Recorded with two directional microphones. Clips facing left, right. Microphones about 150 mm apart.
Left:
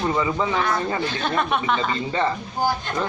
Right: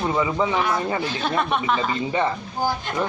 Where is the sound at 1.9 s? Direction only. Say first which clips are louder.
Even; 15° right (ahead or behind).